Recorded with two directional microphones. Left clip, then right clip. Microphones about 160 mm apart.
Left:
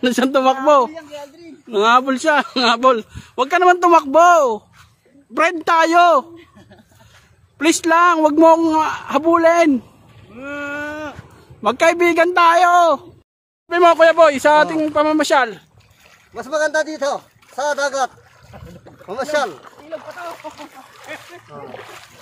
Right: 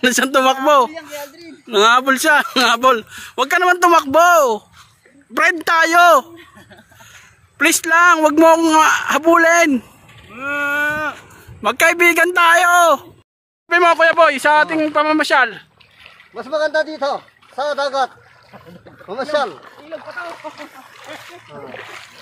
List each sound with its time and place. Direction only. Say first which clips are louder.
0.0 s speech: right 1 dB; centre (ahead or behind)
0.8 s speech: right 2 dB; 40° right (ahead or behind)
1.7 s speech: right 2 dB; centre (ahead or behind)
7.5 s speech: right 1 dB; 5° left (ahead or behind)
10.3 s a sound: right 7 dB; 30° right (ahead or behind)
11.6 s speech: right 2 dB; 10° left (ahead or behind)
16.3 s speech: right 1 dB; 20° left (ahead or behind)
17.6 s speech: right 1 dB; 50° left (ahead or behind)
20.5 s speech: right 2 dB; 15° right (ahead or behind)